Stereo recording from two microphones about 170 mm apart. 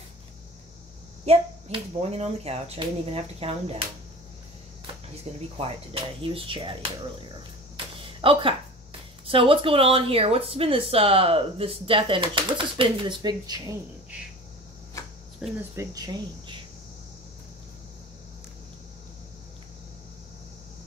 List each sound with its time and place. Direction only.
1.2 s speech: 35° right (ahead or behind)
6.2 s speech: 30° right (ahead or behind)
7.7 s a sound: 30° right (ahead or behind)
9.2 s speech: 30° right (ahead or behind)
15.0 s cricket: 20° left (ahead or behind)
15.7 s speech: 20° right (ahead or behind)